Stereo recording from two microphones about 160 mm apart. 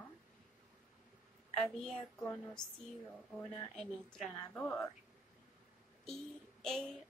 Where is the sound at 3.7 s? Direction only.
Centre (ahead or behind).